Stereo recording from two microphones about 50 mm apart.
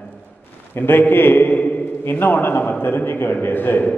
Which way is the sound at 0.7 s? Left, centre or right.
Left.